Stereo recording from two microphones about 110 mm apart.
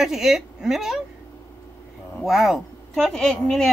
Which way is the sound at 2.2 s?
Centre (ahead or behind).